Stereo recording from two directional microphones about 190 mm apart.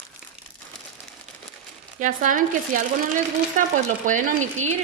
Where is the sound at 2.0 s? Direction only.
45° right (ahead or behind).